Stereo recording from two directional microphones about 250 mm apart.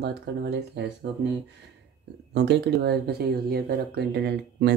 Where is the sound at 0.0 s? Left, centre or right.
Right.